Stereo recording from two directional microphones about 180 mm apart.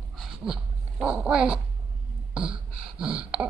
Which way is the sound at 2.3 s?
5° right (ahead or behind).